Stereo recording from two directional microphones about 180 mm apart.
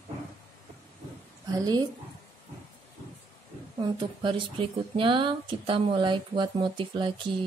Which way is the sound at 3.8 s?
25° right (ahead or behind).